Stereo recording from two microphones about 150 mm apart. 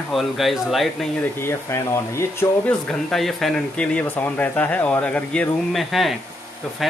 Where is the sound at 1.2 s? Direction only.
15° left (ahead or behind).